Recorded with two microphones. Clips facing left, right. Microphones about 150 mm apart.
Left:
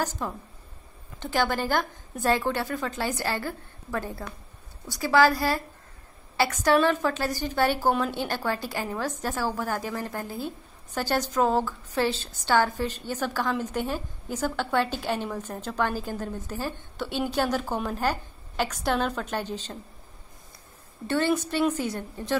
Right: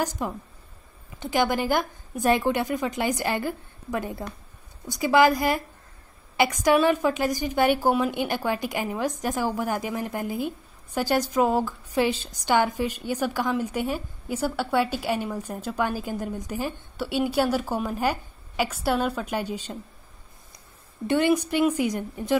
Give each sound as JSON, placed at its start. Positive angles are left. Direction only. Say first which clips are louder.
{"t": 0.0, "sound": "a woman's voice", "louder": "right 2 dB", "side_deg": -15}
{"t": 21.1, "sound": "a woman's voice", "louder": "right 3 dB", "side_deg": -15}